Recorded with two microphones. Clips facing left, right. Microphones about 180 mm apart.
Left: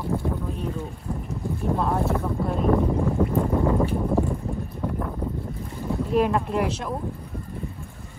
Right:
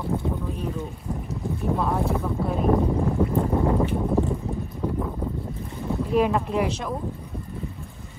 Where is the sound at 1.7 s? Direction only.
Centre (ahead or behind).